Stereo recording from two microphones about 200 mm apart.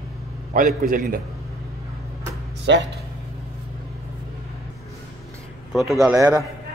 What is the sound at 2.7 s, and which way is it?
Speech, 65° right (ahead or behind).